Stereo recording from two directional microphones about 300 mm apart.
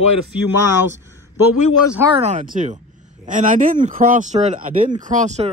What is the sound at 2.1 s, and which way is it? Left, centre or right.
A man's voice, right.